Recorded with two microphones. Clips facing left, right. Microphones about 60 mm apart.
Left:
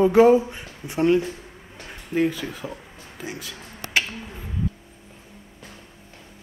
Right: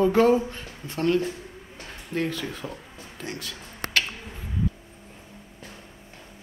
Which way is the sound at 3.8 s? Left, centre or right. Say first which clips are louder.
Left 2 dB; right.